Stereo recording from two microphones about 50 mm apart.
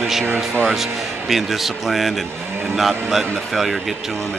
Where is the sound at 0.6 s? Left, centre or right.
Centre.